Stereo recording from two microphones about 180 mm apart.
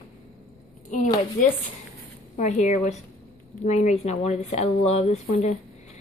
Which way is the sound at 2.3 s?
40° left (ahead or behind).